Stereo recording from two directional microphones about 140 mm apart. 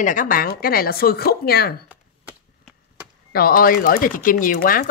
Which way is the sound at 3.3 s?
90° left.